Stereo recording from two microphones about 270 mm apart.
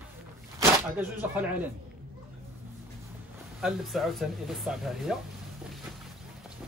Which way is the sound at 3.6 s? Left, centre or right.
Centre.